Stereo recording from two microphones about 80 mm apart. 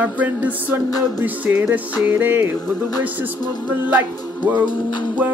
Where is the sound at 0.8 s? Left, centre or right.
Left.